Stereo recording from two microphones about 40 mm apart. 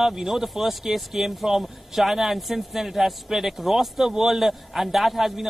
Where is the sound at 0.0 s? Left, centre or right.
Centre.